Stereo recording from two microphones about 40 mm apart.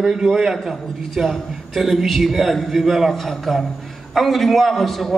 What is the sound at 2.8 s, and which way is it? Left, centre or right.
Speech, centre.